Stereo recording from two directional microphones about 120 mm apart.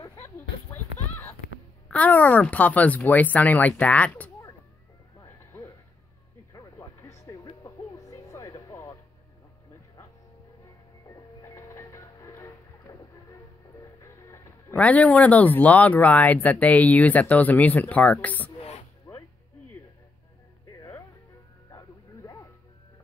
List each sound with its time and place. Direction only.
0.0 s a sound: 25° left (ahead or behind)
1.9 s speech: 15° left (ahead or behind)
5.2 s music: 25° left (ahead or behind)
6.5 s a sound: 25° left (ahead or behind)
7.6 s music: 25° left (ahead or behind)
11.1 s music: 25° left (ahead or behind)
14.8 s speech: 10° left (ahead or behind)
19.1 s music: 25° left (ahead or behind)
21.6 s music: 25° left (ahead or behind)